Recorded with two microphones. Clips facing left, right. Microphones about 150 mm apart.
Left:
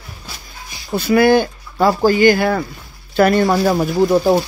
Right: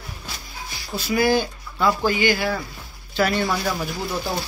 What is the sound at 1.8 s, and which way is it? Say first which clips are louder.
Speech: left 8 dB; 40° left (ahead or behind).